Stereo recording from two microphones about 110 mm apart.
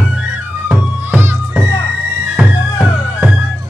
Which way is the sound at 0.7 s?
20° right (ahead or behind).